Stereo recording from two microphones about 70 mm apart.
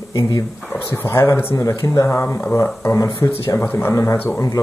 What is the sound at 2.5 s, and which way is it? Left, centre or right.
Speech, left.